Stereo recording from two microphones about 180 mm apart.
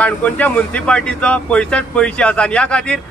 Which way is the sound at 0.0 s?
10° left (ahead or behind).